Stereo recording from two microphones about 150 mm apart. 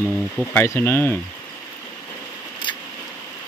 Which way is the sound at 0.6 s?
15° left (ahead or behind).